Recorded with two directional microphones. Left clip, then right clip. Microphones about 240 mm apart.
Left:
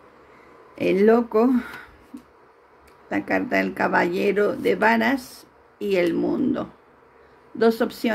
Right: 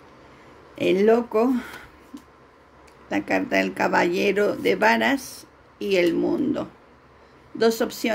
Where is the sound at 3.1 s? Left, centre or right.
Centre.